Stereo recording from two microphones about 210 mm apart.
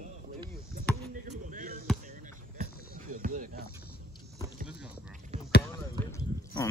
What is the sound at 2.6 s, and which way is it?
Run, 40° right (ahead or behind).